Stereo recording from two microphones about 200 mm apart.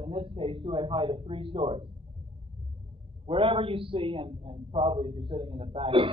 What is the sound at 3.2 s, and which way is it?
A man's voice, 25° right (ahead or behind).